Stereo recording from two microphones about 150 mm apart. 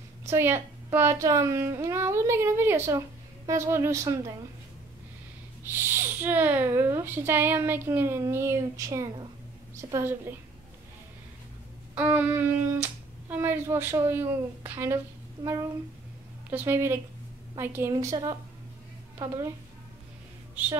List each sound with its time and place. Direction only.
0.3 s a woman's voice: 15° right (ahead or behind)
5.7 s a woman's voice: 15° right (ahead or behind)
11.9 s speech: 10° right (ahead or behind)
16.4 s a woman's voice: 15° right (ahead or behind)